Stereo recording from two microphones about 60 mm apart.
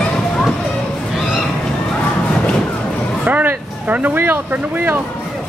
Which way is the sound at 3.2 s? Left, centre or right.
Right.